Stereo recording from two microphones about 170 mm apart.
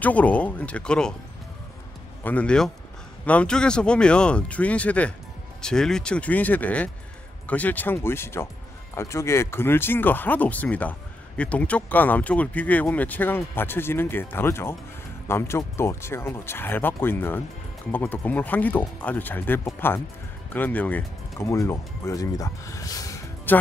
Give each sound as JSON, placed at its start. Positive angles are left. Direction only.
{"t": 0.0, "sound": "speech", "side_deg": 10}
{"t": 2.2, "sound": "speech", "side_deg": 5}